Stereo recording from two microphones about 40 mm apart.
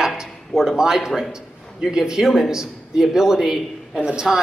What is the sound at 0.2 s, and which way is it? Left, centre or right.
A man's voice, centre.